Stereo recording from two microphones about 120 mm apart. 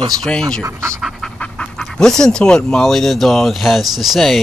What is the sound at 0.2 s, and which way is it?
Speech, 5° left (ahead or behind).